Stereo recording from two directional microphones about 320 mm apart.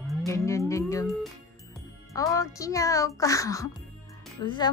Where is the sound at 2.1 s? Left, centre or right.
Centre.